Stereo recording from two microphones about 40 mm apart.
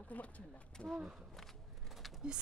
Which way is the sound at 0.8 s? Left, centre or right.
Left.